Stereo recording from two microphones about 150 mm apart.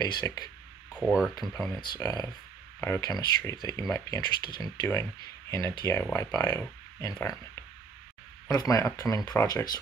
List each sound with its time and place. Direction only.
0.0 s speech: 25° left (ahead or behind)
0.9 s speech: 5° right (ahead or behind)
1.7 s speech: 30° left (ahead or behind)
8.5 s speech: 25° left (ahead or behind)